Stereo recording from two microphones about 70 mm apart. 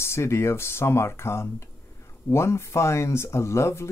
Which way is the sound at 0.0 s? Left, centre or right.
Left.